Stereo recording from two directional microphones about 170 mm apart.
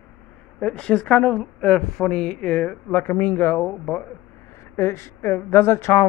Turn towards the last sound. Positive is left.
turn(degrees=15)  # may be behind; listen again after turning